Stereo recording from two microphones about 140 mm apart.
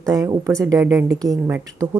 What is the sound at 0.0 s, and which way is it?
A woman's voice, 25° right (ahead or behind).